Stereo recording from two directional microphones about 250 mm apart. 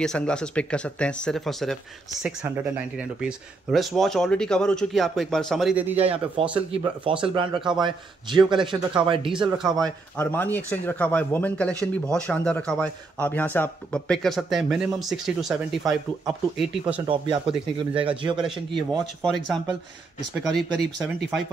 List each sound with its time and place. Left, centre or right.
0.0 s a man's voice: centre
3.0 s a man's voice: centre
5.9 s speech: right
10.1 s a man's voice: centre
17.0 s speech: centre
18.8 s a man's voice: centre